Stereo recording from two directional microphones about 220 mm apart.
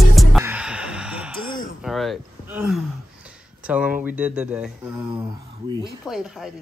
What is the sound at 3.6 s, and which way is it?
Speech, 5° right (ahead or behind).